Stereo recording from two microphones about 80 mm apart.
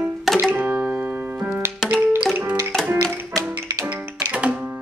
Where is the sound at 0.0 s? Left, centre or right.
Centre.